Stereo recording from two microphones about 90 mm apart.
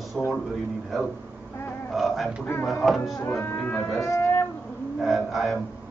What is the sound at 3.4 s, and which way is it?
Speech, 20° left (ahead or behind).